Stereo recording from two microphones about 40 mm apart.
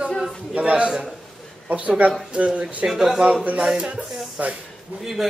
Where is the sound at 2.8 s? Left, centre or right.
Centre.